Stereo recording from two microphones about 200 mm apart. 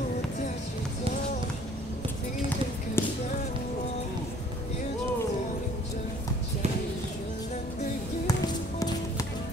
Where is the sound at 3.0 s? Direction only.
10° left (ahead or behind).